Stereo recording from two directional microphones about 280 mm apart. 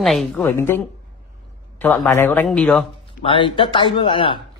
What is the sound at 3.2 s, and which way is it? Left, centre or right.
Speech, centre.